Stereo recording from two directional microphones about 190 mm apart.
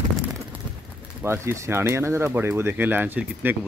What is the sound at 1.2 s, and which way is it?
Speech, 15° right (ahead or behind).